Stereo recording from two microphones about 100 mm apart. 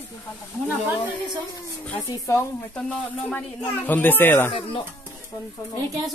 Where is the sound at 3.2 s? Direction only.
15° left (ahead or behind).